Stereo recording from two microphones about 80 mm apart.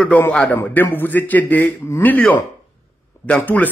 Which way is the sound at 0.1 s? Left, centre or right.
Centre.